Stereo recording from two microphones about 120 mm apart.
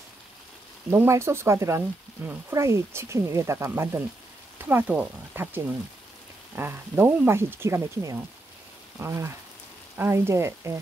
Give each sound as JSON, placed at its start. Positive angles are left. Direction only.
{"t": 0.8, "sound": "speech", "side_deg": -20}